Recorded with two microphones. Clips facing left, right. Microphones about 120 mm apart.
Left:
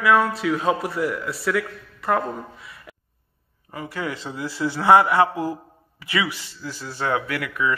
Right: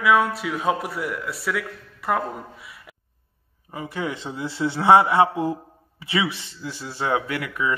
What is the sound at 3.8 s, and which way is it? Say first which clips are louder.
Speech: right 1 dB; 20° right (ahead or behind).